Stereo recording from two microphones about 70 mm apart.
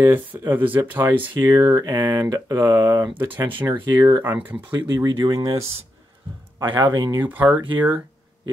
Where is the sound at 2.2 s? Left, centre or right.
Right.